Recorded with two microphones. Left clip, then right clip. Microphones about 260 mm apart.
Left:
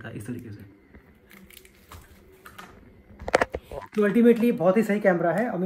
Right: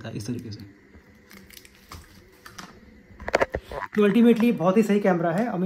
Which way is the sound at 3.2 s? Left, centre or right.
Left.